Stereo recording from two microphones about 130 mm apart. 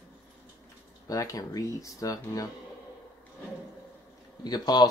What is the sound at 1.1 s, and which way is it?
Speech, 25° left (ahead or behind).